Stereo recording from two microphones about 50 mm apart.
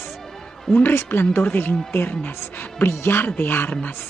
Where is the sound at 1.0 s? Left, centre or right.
Left.